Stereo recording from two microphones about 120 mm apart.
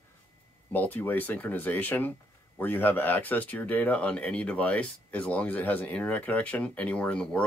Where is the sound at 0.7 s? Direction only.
15° left (ahead or behind).